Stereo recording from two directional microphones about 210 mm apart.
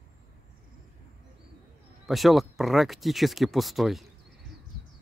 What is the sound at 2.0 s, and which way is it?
Speech, centre (ahead or behind).